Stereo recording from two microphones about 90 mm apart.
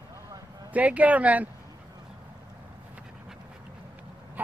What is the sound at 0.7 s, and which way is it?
Speech, 15° right (ahead or behind).